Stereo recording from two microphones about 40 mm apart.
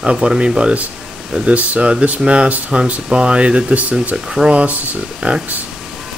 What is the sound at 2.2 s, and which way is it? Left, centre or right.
Speech, right.